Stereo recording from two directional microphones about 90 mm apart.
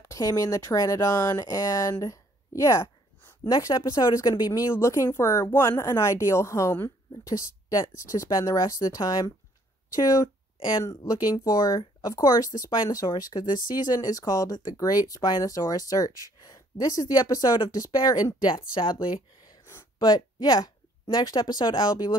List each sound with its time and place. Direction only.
0.0 s speech: 40° left (ahead or behind)
3.4 s speech: 45° left (ahead or behind)
9.0 s speech: 55° left (ahead or behind)
9.9 s speech: 40° left (ahead or behind); by 19.2 s 70° left (ahead or behind)
19.6 s a sound: 30° left (ahead or behind)
20.0 s speech: 55° left (ahead or behind)